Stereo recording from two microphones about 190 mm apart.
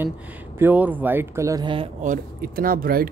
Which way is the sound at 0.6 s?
10° right (ahead or behind).